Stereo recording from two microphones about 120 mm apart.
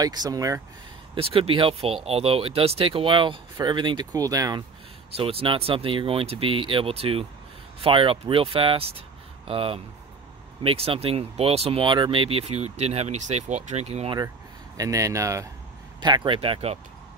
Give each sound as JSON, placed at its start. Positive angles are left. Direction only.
{"t": 0.0, "sound": "speech", "side_deg": -35}
{"t": 1.1, "sound": "speech", "side_deg": -50}
{"t": 5.1, "sound": "speech", "side_deg": -50}
{"t": 14.8, "sound": "speech", "side_deg": -25}
{"t": 16.0, "sound": "speech", "side_deg": -40}